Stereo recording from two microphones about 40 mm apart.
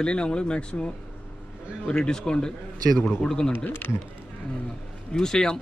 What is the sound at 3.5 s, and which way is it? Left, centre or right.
Speech, left.